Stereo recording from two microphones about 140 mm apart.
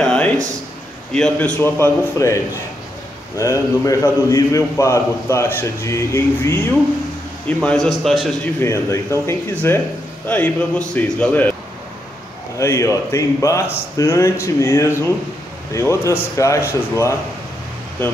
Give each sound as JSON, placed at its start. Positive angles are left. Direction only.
{"t": 0.0, "sound": "a sound", "side_deg": 5}
{"t": 1.1, "sound": "a man's voice", "side_deg": 5}
{"t": 3.3, "sound": "a man's voice", "side_deg": 20}
{"t": 7.4, "sound": "a man's voice", "side_deg": 5}
{"t": 8.5, "sound": "a man's voice", "side_deg": 20}
{"t": 12.5, "sound": "a man's voice", "side_deg": 20}